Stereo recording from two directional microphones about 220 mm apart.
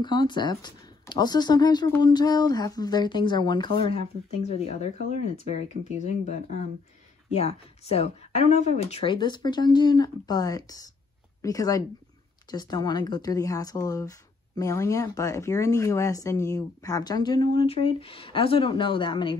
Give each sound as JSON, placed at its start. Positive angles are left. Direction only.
{"t": 0.0, "sound": "speech", "side_deg": 20}